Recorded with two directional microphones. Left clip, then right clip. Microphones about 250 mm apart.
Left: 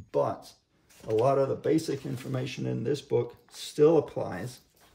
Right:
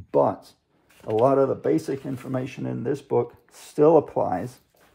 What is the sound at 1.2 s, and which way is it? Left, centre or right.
Speech, centre.